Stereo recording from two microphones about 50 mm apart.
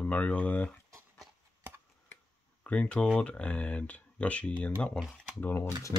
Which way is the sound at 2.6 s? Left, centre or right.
Left.